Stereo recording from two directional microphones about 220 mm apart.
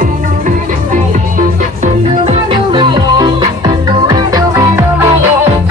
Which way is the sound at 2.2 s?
20° right (ahead or behind).